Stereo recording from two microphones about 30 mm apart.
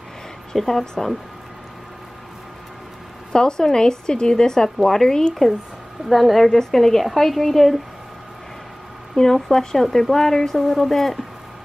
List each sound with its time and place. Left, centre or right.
0.7 s speech: centre
3.3 s a woman's voice: left
6.0 s speech: centre
6.5 s speech: centre
9.1 s speech: centre
10.6 s speech: centre